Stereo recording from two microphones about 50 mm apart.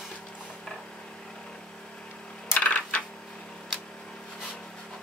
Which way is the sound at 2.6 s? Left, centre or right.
Left.